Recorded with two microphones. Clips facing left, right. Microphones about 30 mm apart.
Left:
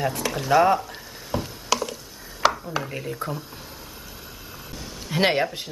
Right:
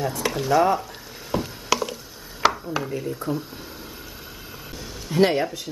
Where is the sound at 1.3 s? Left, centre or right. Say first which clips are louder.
Right 1 dB; centre.